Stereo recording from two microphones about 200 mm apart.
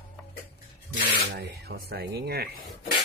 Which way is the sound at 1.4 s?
55° right (ahead or behind).